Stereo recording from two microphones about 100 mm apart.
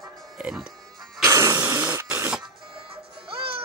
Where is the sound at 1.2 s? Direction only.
35° right (ahead or behind).